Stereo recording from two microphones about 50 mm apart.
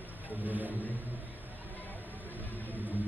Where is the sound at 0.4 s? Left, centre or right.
Right.